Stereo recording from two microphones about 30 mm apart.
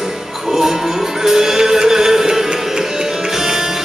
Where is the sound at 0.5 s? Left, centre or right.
Centre.